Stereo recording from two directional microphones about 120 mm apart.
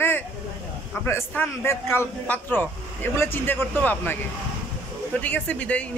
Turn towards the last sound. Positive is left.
turn(degrees=10)  # may be behind; listen again after turning